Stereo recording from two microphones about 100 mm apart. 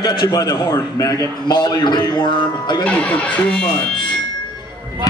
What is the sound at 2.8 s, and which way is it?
Speech, 10° left (ahead or behind).